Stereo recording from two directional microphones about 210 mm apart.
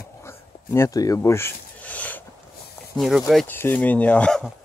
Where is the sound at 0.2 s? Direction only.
10° left (ahead or behind).